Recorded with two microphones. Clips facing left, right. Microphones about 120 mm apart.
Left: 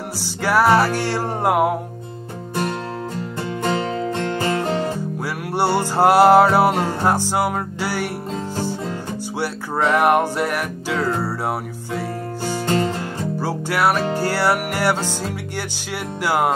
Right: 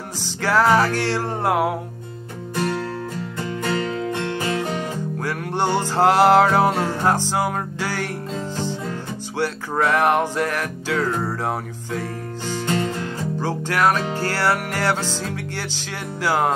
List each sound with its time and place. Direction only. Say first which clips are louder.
0.4 s music: left 1 dB; 15° left (ahead or behind); by 4.6 s 30° left (ahead or behind)
5.2 s music: left 2 dB; 10° left (ahead or behind)
9.8 s music: left 3 dB; 15° left (ahead or behind)
12.6 s music: left 3 dB; 35° left (ahead or behind)
13.4 s music: even; 10° left (ahead or behind)